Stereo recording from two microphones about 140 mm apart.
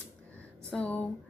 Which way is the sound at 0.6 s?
5° left (ahead or behind).